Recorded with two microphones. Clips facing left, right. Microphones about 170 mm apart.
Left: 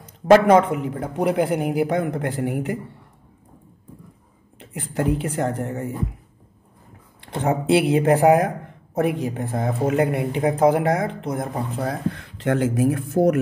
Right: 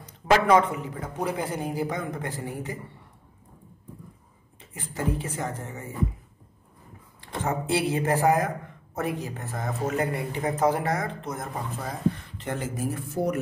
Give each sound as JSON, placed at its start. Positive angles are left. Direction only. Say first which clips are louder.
{"t": 0.0, "sound": "speech", "louder": "left 8 dB", "side_deg": 55}
{"t": 4.6, "sound": "speech", "louder": "left 8 dB", "side_deg": 65}
{"t": 7.2, "sound": "speech", "louder": "left 6 dB", "side_deg": 65}